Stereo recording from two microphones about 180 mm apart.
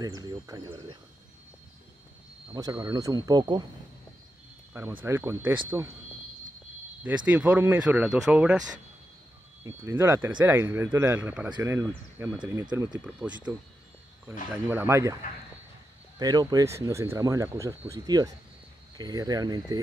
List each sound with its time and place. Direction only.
0.0 s speech: 20° right (ahead or behind)
2.5 s speech: 20° right (ahead or behind)
5.0 s speech: 15° right (ahead or behind)
7.2 s speech: 10° right (ahead or behind)
9.6 s speech: 10° right (ahead or behind)
16.2 s speech: 20° right (ahead or behind)